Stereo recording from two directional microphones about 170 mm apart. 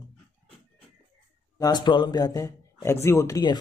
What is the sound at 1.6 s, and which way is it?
Speech, 25° left (ahead or behind).